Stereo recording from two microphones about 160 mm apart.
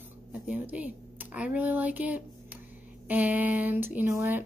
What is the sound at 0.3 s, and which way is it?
Speech, 10° right (ahead or behind).